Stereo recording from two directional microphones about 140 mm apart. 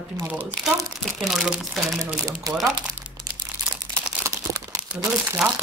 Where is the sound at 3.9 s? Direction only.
20° right (ahead or behind).